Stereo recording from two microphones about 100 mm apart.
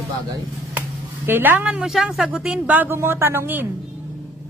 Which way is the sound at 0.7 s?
20° right (ahead or behind).